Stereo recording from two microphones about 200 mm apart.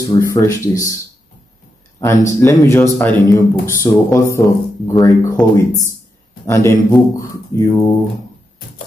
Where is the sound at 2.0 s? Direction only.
15° left (ahead or behind).